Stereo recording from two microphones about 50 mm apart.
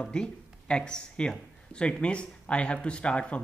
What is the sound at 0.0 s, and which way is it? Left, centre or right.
A man's voice, centre.